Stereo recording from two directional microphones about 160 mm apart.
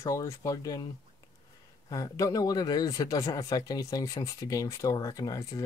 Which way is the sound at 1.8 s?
20° left (ahead or behind).